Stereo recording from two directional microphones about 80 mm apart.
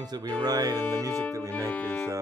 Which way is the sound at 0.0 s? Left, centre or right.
Right.